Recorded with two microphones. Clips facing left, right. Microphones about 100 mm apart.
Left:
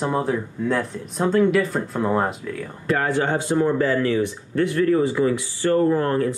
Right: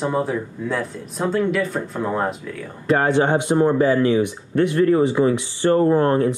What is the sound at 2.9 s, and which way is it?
Speech, 20° right (ahead or behind).